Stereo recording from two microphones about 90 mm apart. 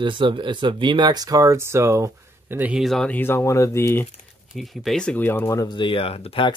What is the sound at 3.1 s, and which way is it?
Speech, 25° left (ahead or behind).